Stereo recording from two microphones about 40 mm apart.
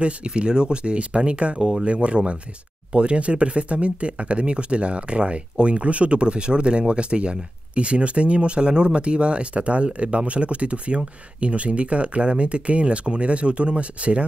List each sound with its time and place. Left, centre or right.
0.0 s speech: right